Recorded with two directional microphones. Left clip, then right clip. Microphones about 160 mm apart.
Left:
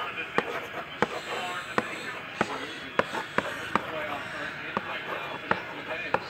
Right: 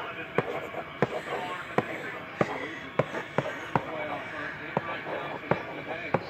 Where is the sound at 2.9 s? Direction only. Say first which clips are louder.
Left 2 dB; 10° left (ahead or behind).